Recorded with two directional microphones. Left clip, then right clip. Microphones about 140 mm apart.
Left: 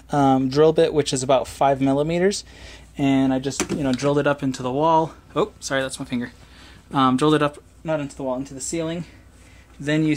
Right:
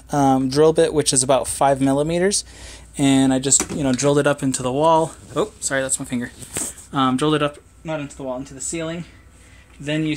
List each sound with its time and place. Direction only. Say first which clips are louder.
0.1 s speech: right 1 dB; 5° left (ahead or behind)
3.0 s speech: right 3 dB; 20° right (ahead or behind)
5.3 s speech: left 1 dB; centre (ahead or behind)
6.9 s speech: left 1 dB; 15° left (ahead or behind)
7.8 s speech: left 2 dB; 30° left (ahead or behind)
9.8 s speech: left 2 dB; 30° left (ahead or behind)